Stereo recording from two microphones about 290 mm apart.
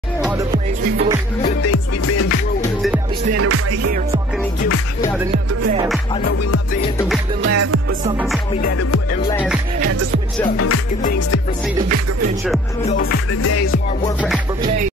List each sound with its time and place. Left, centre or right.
0.2 s music: centre
1.6 s music: left
3.3 s music: right
5.3 s music: right
7.4 s music: right
13.0 s music: left
14.0 s music: centre